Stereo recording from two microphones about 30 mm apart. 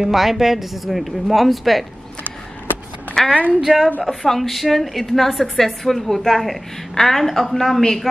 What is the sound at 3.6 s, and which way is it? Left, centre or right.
Speech, centre.